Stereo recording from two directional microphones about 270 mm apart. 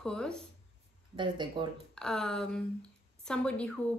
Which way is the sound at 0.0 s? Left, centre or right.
Centre.